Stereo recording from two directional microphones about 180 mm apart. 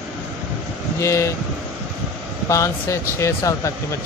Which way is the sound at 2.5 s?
15° left (ahead or behind).